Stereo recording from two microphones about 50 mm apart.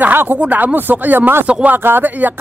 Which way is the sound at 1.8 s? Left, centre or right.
Right.